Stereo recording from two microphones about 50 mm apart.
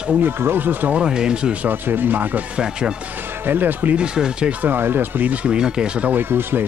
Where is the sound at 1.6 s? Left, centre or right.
Right.